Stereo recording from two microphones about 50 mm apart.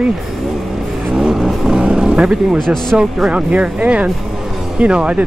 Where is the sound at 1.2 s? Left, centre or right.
Centre.